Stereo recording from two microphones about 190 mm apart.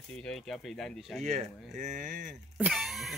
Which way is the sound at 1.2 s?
40° right (ahead or behind).